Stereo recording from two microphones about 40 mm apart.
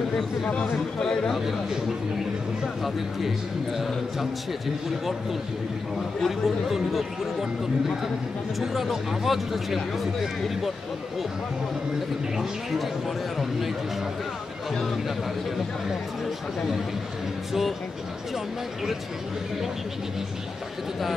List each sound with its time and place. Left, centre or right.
0.1 s speech: centre
1.0 s speech: centre
1.3 s a man's voice: centre
2.6 s a man's voice: centre
6.2 s a man's voice: centre
8.5 s a man's voice: centre
12.4 s a man's voice: centre
14.7 s speech: centre
17.5 s speech: centre